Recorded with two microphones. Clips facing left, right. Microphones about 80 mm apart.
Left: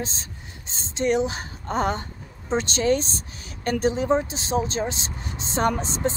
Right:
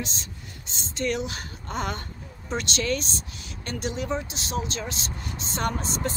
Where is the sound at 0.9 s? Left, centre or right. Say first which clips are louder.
Left 6 dB; left.